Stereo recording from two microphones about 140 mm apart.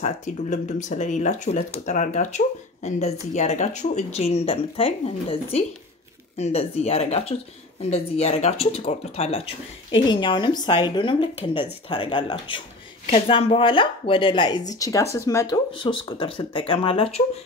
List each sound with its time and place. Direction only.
0.0 s speech: 60° left (ahead or behind); by 17.2 s 40° left (ahead or behind)